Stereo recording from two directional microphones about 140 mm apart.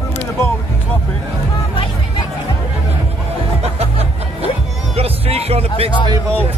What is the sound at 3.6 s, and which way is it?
Music, 45° right (ahead or behind).